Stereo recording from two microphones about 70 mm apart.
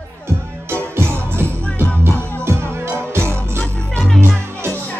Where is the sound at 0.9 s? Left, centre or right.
Right.